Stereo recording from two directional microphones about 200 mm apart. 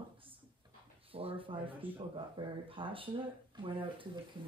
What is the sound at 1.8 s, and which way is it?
Speech, 10° right (ahead or behind).